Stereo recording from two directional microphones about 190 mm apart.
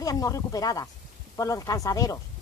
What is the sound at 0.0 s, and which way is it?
Speech, 20° left (ahead or behind).